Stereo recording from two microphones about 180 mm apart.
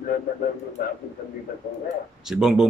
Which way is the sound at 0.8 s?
55° left (ahead or behind).